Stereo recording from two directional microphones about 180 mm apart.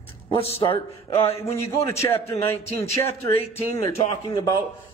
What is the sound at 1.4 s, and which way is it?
A man's voice, 15° left (ahead or behind).